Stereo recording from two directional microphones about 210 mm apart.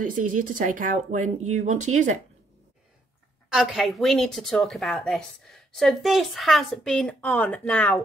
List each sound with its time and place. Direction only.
0.4 s speech: 40° right (ahead or behind)
3.4 s a woman's voice: centre (ahead or behind)